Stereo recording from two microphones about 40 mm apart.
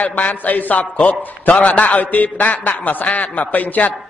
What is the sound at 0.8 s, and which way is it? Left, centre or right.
A man's voice, left.